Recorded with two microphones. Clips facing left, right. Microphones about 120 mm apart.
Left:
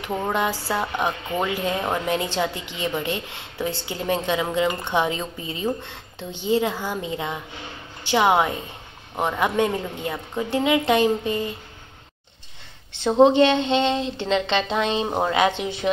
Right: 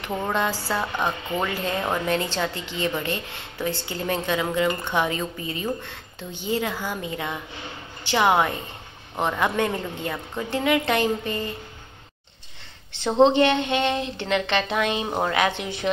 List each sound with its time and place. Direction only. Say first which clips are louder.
0.0 s a woman's voice: left 1 dB; 10° left (ahead or behind)
12.9 s a woman's voice: left 2 dB; 15° left (ahead or behind)
15.0 s a woman's voice: left 2 dB; 10° left (ahead or behind)
15.3 s a woman's voice: left 3 dB; 20° left (ahead or behind)